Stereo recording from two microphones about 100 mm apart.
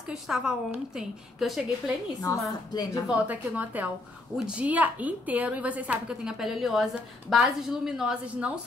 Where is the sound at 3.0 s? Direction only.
15° right (ahead or behind).